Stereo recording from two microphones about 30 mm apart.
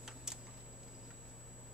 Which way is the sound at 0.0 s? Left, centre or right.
Right.